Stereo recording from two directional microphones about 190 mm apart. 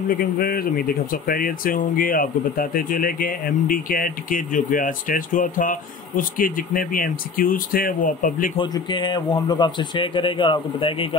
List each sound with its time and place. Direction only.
0.1 s speech: 50° left (ahead or behind)
8.5 s a man's voice: 25° left (ahead or behind)